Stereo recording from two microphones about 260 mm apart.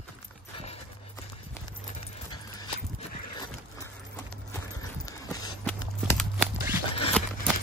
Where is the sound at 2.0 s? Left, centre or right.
Centre.